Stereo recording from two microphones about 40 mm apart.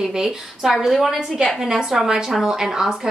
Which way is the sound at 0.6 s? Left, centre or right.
Centre.